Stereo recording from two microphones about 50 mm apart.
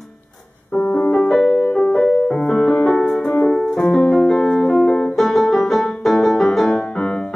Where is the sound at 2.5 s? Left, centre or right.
Centre; by 5.1 s left.